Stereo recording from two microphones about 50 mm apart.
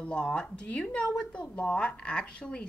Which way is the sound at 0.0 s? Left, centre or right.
Left.